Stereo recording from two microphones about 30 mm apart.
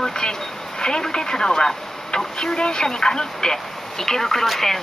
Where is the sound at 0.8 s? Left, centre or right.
Left.